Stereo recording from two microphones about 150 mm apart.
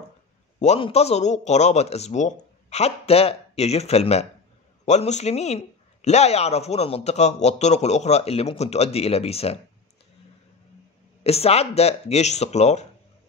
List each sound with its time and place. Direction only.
0.6 s a man's voice: 50° left (ahead or behind)
11.2 s speech: 45° left (ahead or behind)